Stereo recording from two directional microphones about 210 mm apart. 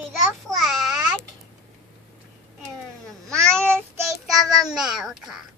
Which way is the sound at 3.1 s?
5° left (ahead or behind).